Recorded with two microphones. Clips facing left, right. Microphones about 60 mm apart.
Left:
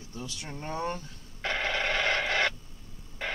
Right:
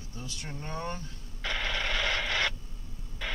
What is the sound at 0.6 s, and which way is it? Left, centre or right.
Speech, left.